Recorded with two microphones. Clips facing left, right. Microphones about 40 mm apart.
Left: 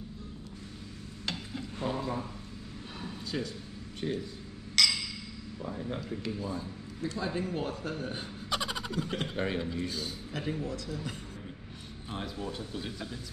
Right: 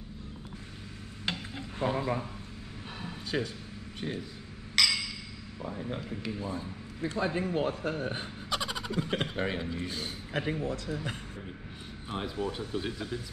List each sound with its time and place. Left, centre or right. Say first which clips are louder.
1.8 s speech: right 4 dB; right
3.3 s a man's voice: right 3 dB; right
4.0 s speech: left 3 dB; right
4.8 s a sound: right 1 dB; centre
5.6 s speech: even; centre; by 8.3 s right
8.5 s a sound: even; centre
9.3 s a man's voice: even; centre
9.8 s a man's voice: even; right
12.1 s speech: right 4 dB; centre